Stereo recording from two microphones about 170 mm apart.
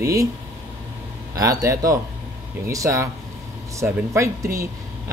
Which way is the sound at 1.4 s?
20° right (ahead or behind).